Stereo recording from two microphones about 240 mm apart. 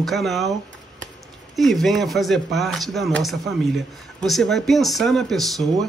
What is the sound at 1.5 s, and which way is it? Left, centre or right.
A man's voice, centre.